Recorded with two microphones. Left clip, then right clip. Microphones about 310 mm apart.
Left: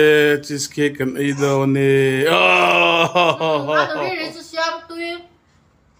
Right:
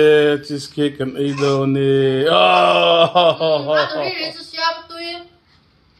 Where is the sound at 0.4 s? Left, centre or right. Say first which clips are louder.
Even; left.